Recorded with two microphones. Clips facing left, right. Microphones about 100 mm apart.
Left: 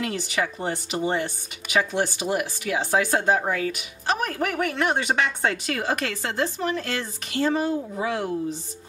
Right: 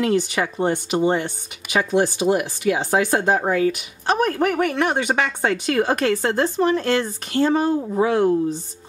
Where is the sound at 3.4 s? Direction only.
30° right (ahead or behind).